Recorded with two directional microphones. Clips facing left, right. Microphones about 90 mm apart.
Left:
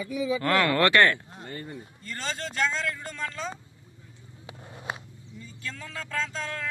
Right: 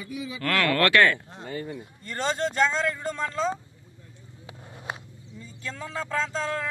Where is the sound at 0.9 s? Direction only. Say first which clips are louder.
Right 1 dB; 5° left (ahead or behind).